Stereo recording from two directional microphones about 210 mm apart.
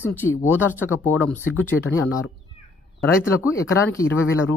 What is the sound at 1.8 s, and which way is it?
Speech, 75° left (ahead or behind).